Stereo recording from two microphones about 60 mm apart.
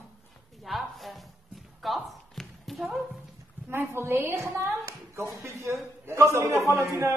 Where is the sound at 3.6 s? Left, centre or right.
Right.